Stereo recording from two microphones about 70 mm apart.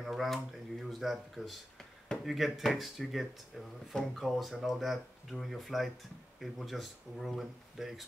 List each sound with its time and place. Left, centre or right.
0.0 s speech: centre